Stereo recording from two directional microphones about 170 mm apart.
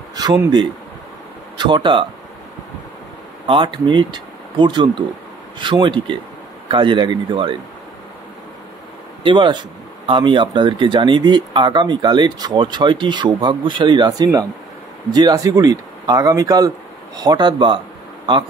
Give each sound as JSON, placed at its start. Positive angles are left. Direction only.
{"t": 0.1, "sound": "speech", "side_deg": -25}
{"t": 3.4, "sound": "speech", "side_deg": -30}
{"t": 9.2, "sound": "speech", "side_deg": -30}